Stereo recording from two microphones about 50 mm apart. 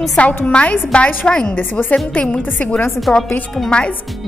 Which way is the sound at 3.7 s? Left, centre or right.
Left.